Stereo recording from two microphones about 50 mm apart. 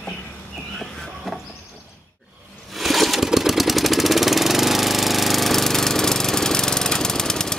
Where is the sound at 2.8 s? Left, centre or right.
Centre.